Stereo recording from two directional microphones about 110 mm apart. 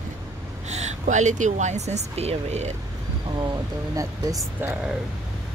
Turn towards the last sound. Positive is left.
turn(degrees=-15)  # may be behind; listen again after turning